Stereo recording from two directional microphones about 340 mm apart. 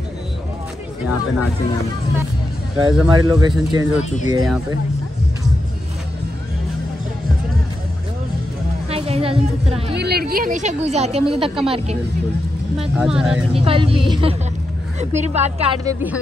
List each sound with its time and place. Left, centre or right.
1.0 s speech: left
2.8 s speech: centre
4.0 s speech: left
8.9 s a woman's voice: centre
9.9 s speech: right
12.9 s speech: centre
13.5 s speech: centre